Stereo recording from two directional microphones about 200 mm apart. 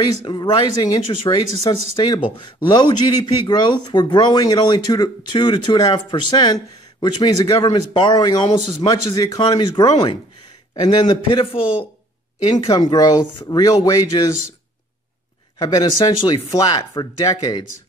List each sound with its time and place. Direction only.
0.2 s speech: 20° left (ahead or behind)
15.6 s speech: 20° left (ahead or behind)